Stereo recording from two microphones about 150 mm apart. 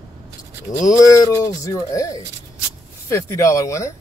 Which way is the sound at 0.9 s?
25° left (ahead or behind).